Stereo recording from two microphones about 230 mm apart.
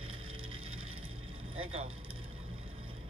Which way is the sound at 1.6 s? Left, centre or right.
Right.